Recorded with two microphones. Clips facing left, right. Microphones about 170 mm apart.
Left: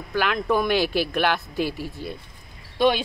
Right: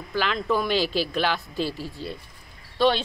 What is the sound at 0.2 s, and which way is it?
A woman's voice, 15° left (ahead or behind).